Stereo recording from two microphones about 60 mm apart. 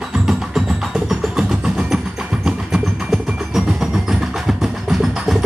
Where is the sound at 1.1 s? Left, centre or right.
Centre.